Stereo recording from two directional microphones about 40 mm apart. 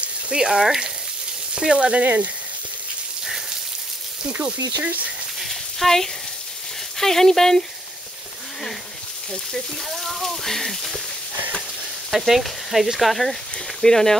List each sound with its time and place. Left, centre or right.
0.4 s speech: centre
2.0 s speech: right
4.8 s speech: right
5.4 s a sound: centre
7.0 s speech: centre
9.8 s speech: centre
12.1 s speech: centre